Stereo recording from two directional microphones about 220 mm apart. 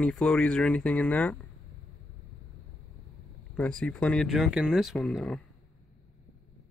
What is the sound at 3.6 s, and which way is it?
Speech, 5° left (ahead or behind).